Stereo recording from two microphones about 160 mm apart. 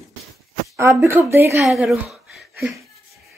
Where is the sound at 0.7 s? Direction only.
15° right (ahead or behind).